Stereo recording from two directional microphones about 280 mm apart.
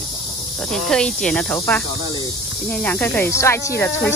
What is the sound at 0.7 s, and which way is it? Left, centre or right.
Speech, centre.